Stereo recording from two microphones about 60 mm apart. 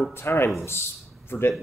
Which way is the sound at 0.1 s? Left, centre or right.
Left.